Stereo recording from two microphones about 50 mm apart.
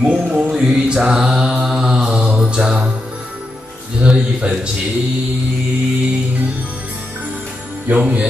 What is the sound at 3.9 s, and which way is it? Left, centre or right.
Speech, centre.